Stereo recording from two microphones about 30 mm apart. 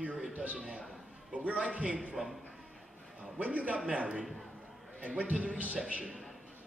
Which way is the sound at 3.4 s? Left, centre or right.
Right.